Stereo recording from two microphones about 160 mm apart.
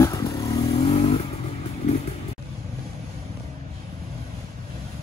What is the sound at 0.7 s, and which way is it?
Vehicle, 40° left (ahead or behind).